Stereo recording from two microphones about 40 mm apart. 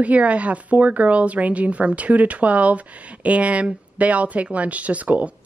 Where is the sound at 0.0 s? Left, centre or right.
Right.